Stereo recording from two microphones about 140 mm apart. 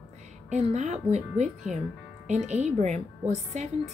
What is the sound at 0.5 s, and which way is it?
A woman's voice, 55° right (ahead or behind).